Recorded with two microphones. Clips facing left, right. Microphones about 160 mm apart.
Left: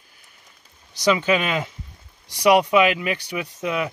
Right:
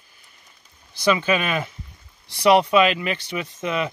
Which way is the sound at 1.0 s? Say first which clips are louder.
Left 1 dB; 15° left (ahead or behind).